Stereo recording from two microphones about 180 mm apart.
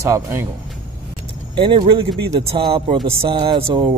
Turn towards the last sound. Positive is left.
turn(degrees=-25)  # may be behind; listen again after turning